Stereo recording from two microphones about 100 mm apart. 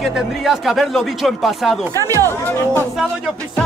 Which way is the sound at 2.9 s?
5° right (ahead or behind).